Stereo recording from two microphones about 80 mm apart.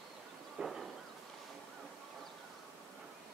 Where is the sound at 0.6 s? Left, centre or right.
Centre.